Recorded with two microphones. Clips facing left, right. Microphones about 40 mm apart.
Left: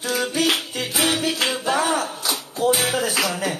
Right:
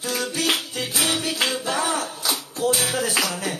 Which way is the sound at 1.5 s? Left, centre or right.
Centre.